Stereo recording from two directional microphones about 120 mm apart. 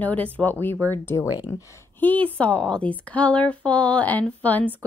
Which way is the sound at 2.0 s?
15° left (ahead or behind).